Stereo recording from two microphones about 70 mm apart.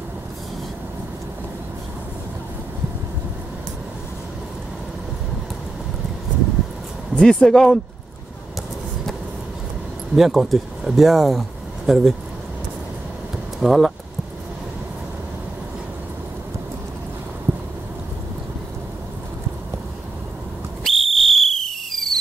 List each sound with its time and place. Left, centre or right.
7.2 s speech: centre
10.1 s speech: centre
13.6 s speech: centre
17.5 s a sound: right
20.8 s whistle: centre